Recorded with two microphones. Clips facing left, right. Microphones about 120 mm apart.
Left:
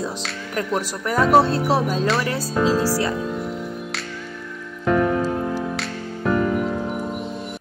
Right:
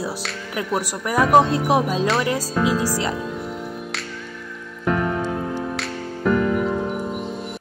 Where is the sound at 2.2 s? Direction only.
20° right (ahead or behind).